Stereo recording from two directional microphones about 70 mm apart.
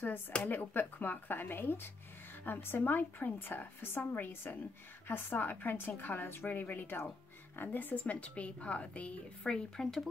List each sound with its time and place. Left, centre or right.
0.5 s a woman's voice: left
9.8 s speech: centre